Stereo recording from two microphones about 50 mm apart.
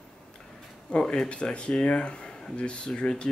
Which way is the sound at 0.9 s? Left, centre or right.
Centre.